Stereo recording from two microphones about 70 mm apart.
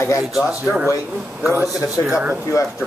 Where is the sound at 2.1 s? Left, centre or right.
Right.